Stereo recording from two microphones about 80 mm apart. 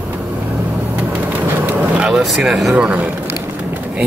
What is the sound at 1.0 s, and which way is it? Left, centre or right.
Vehicle, right.